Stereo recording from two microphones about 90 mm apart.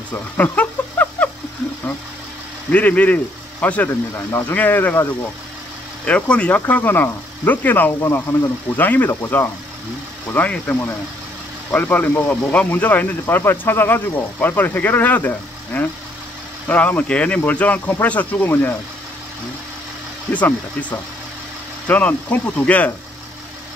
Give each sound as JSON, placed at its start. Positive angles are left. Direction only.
{"t": 0.1, "sound": "a sound", "side_deg": 15}
{"t": 2.7, "sound": "speech", "side_deg": 15}
{"t": 4.3, "sound": "speech", "side_deg": 30}
{"t": 6.0, "sound": "speech", "side_deg": 10}
{"t": 20.3, "sound": "speech", "side_deg": 20}